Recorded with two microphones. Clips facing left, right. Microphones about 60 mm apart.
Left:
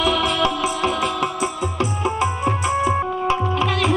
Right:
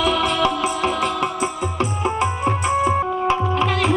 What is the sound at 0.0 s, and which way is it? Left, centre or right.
Music, centre.